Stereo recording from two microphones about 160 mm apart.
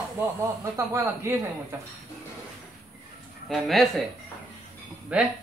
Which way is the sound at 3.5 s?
Centre (ahead or behind).